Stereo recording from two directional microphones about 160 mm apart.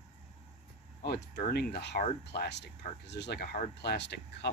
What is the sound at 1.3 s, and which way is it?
Speech, 70° left (ahead or behind).